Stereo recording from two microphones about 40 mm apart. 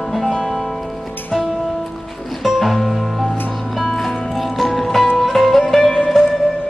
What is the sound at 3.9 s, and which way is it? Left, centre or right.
Music, centre.